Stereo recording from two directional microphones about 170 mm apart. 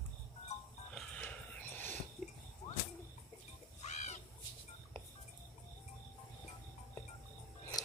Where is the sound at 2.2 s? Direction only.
Centre (ahead or behind).